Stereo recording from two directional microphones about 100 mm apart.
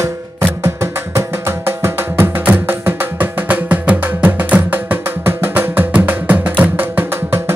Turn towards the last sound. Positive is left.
turn(degrees=-25)  # may be behind; listen again after turning